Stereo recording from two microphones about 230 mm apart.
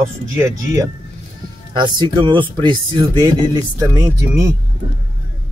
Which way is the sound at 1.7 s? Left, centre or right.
Centre.